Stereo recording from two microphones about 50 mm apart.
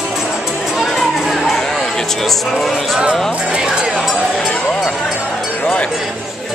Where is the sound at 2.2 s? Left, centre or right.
Centre.